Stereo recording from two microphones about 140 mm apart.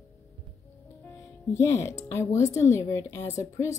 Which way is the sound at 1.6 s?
20° left (ahead or behind).